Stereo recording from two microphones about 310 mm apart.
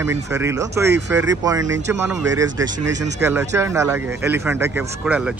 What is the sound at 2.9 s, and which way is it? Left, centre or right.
Speech, right.